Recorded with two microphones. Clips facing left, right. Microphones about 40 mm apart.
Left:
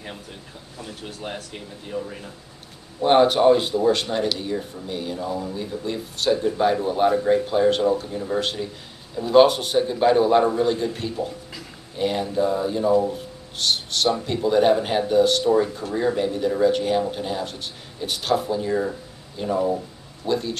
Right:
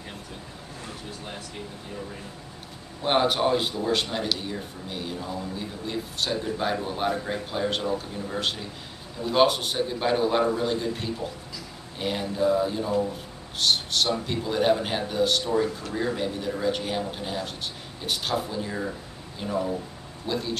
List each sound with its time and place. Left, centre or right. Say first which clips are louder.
3.0 s speech: left 7 dB; centre
7.8 s a man's voice: left 7 dB; centre
19.4 s a man's voice: left 5 dB; centre
20.2 s speech: left 5 dB; centre